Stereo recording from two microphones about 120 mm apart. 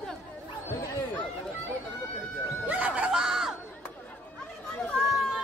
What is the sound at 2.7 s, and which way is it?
Music, 10° right (ahead or behind).